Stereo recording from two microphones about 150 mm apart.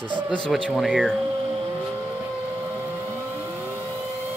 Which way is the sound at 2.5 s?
15° right (ahead or behind).